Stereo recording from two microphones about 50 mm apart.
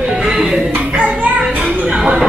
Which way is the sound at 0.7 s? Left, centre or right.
Right.